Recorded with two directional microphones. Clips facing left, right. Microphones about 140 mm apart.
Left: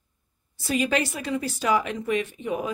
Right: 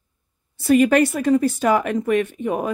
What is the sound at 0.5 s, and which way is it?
Speech, 55° right (ahead or behind).